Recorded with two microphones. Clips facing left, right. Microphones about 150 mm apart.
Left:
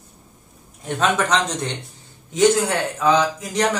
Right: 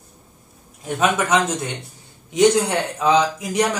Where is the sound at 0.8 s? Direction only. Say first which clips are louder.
Right 1 dB; 10° right (ahead or behind).